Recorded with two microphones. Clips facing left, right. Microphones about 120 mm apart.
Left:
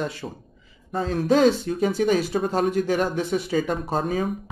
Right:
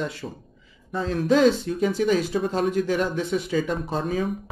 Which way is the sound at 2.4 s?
40° left (ahead or behind).